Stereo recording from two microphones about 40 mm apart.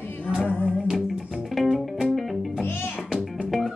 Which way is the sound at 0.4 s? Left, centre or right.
Left.